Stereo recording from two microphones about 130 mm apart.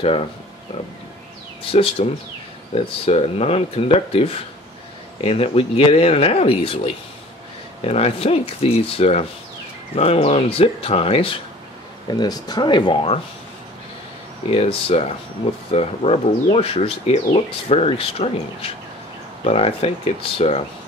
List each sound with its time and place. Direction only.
0.0 s speech: 45° left (ahead or behind)
1.7 s speech: 45° left (ahead or behind)
7.8 s speech: 50° left (ahead or behind)
12.1 s speech: 30° left (ahead or behind)
14.5 s speech: 50° left (ahead or behind)